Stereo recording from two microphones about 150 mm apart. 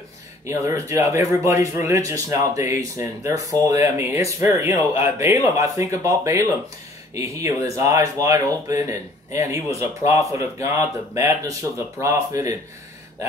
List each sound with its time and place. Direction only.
0.5 s speech: 20° right (ahead or behind)